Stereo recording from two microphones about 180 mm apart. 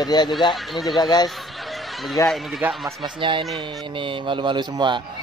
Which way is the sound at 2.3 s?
Centre (ahead or behind).